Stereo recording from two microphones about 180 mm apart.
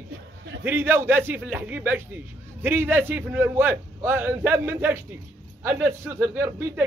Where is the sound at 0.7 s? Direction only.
10° right (ahead or behind).